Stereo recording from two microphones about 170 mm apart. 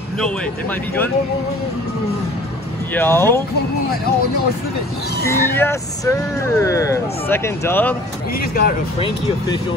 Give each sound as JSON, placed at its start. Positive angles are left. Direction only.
{"t": 0.2, "sound": "speech", "side_deg": 10}
{"t": 2.9, "sound": "speech", "side_deg": 15}
{"t": 5.2, "sound": "speech", "side_deg": 15}
{"t": 8.4, "sound": "speech", "side_deg": 60}